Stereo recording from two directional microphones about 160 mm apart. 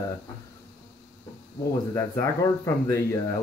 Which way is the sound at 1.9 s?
20° left (ahead or behind).